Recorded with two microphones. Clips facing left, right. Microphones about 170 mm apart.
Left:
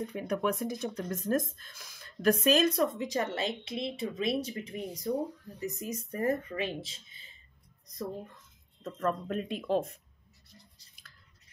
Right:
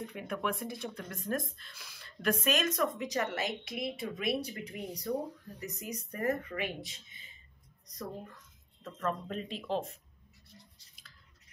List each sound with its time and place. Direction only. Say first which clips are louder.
0.0 s speech: left 5 dB; 40° left (ahead or behind)
2.4 s a woman's voice: left 5 dB; 35° left (ahead or behind)
9.0 s speech: left 4 dB; 50° left (ahead or behind)